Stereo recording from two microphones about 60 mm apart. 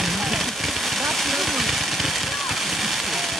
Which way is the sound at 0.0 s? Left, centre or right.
Centre.